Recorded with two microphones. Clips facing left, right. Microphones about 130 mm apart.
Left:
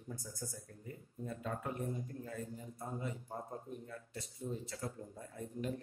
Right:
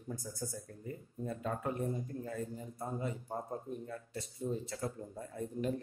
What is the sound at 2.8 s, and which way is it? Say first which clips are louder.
Speech: right 4 dB; 40° right (ahead or behind).